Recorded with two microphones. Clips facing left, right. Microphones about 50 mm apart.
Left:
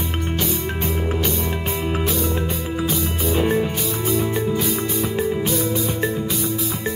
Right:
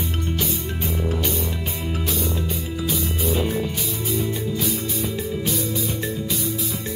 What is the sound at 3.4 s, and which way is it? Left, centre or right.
Music, left.